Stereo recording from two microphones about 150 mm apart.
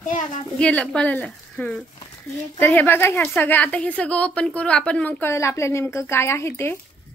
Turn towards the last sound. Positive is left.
turn(degrees=15)  # may be behind; listen again after turning